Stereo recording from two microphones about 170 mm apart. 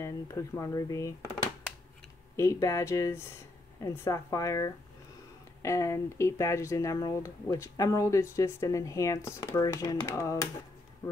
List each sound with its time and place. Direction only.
0.0 s speech: 15° left (ahead or behind)